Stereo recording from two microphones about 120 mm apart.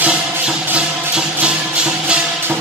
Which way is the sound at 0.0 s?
10° right (ahead or behind).